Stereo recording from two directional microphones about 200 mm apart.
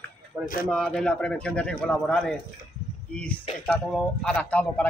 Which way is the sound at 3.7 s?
Centre (ahead or behind).